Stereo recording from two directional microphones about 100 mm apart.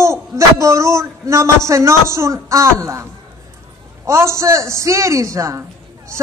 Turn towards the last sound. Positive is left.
turn(degrees=-30)  # may be behind; listen again after turning